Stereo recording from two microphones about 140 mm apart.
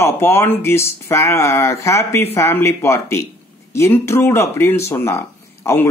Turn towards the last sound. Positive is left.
turn(degrees=15)  # may be behind; listen again after turning